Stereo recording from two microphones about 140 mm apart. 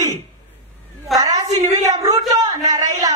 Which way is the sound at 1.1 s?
25° right (ahead or behind).